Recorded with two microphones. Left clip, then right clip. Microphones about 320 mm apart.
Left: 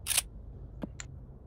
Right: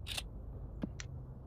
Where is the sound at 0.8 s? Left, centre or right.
Centre.